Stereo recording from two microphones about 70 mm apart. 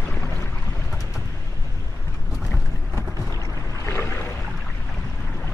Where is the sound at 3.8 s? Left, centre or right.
Left.